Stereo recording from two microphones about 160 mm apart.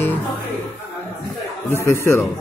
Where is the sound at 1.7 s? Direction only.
15° left (ahead or behind).